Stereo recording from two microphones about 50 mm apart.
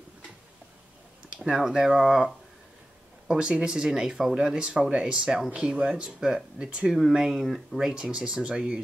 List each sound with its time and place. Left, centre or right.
1.3 s speech: centre
7.2 s speech: centre
7.9 s speech: centre